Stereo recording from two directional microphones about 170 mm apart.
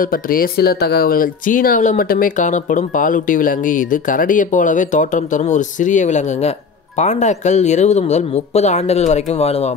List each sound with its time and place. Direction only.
0.0 s speech: 55° left (ahead or behind); by 9.8 s 40° left (ahead or behind)